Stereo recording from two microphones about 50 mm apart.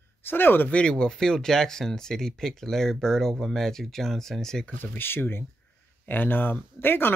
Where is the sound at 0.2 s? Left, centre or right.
Left.